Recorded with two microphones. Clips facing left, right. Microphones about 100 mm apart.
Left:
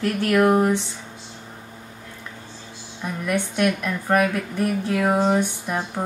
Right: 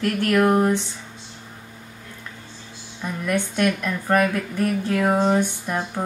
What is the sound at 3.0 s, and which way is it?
A woman's voice, 5° left (ahead or behind).